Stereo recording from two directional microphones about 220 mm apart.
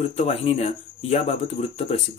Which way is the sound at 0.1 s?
30° left (ahead or behind).